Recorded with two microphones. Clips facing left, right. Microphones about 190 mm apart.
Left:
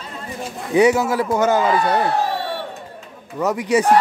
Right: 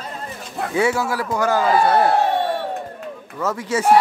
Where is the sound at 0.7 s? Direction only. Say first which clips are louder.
Left 5 dB; 20° left (ahead or behind).